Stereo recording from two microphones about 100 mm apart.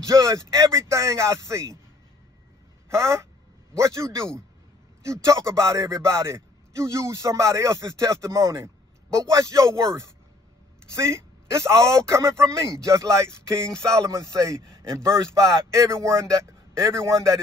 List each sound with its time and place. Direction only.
0.1 s a man's voice: 35° right (ahead or behind)
2.9 s a man's voice: 30° right (ahead or behind)
11.1 s a man's voice: 30° right (ahead or behind)